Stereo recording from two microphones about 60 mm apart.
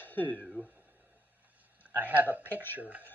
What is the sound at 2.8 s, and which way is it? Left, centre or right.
Speech, right.